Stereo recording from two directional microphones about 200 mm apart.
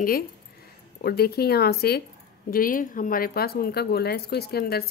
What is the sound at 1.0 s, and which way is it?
Speech, 50° left (ahead or behind).